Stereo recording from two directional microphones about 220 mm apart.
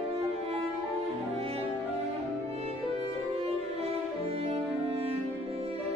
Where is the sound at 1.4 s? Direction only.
25° right (ahead or behind).